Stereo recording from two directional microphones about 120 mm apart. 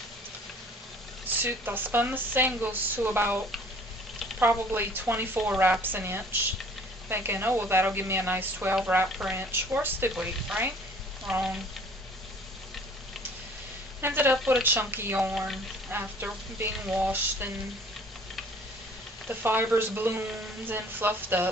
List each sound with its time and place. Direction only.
1.4 s speech: 15° right (ahead or behind)
14.0 s speech: 15° right (ahead or behind)
15.3 s speech: centre (ahead or behind)
15.9 s speech: 15° right (ahead or behind)
19.2 s speech: 15° right (ahead or behind)